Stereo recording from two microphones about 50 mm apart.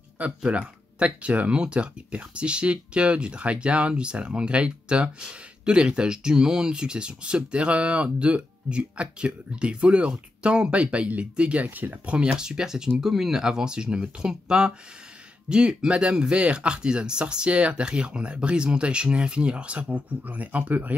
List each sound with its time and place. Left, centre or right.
0.4 s speech: right
11.7 s speech: right
12.2 s speech: centre; by 20.9 s right